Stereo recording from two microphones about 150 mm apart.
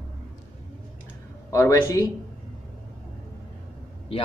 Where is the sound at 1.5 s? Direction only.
20° left (ahead or behind).